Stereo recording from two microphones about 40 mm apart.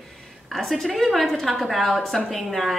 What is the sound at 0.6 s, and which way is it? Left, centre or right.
A woman's voice, centre.